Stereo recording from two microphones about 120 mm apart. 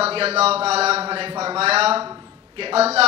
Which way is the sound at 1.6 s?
55° right (ahead or behind).